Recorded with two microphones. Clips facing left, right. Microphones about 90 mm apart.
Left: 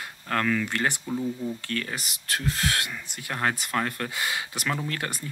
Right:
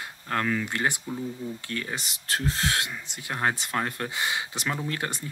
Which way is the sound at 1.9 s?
30° right (ahead or behind).